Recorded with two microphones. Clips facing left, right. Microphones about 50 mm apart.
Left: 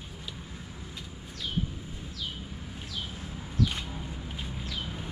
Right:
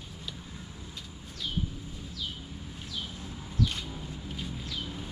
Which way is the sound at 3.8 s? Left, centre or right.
Left.